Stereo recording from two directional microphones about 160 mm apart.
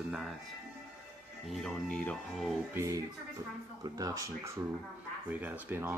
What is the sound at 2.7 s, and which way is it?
Speech, 20° right (ahead or behind).